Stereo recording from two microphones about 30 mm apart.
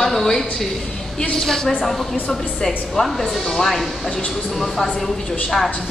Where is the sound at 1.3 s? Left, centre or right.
Centre.